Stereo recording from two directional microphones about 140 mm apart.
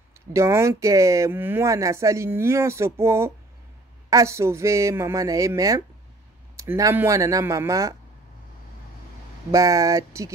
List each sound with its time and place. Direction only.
0.3 s speech: 20° right (ahead or behind)
9.5 s speech: 25° right (ahead or behind)